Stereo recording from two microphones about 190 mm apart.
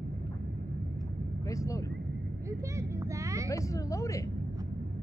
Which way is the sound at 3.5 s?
15° left (ahead or behind).